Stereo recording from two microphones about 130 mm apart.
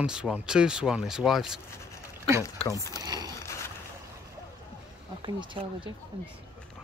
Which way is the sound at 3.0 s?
30° right (ahead or behind).